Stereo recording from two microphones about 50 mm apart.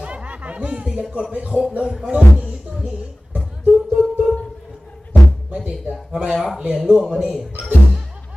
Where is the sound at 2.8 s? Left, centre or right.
Right.